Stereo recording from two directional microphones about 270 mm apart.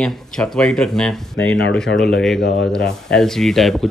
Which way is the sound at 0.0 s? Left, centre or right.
Centre.